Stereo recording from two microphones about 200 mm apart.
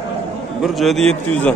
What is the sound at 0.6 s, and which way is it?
Speech, centre (ahead or behind).